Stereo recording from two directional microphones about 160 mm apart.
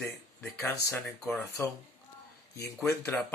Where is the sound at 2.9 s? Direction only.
10° left (ahead or behind).